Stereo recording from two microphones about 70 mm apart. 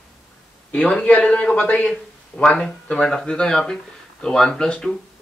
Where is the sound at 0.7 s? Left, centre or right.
Centre.